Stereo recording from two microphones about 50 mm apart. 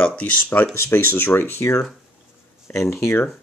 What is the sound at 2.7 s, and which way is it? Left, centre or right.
Speech, left.